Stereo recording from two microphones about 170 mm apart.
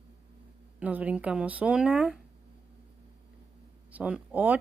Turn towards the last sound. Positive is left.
turn(degrees=-10)  # may be behind; listen again after turning